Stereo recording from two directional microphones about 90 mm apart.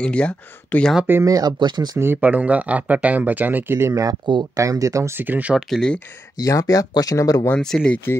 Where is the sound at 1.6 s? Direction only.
55° right (ahead or behind).